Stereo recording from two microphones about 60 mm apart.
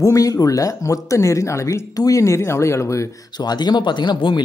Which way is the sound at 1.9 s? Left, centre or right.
Left.